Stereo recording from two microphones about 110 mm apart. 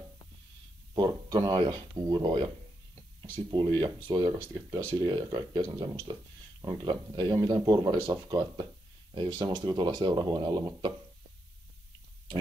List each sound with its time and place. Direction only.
0.9 s speech: 40° right (ahead or behind)